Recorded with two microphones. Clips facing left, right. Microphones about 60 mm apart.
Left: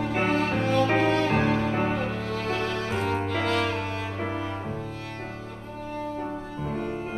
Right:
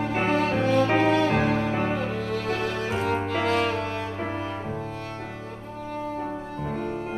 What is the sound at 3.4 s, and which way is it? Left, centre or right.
Music, right.